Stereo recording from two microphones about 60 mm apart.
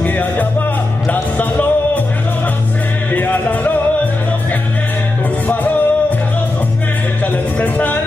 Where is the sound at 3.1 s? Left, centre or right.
Left.